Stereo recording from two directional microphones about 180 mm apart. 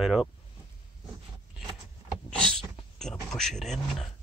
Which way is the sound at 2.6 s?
Centre (ahead or behind).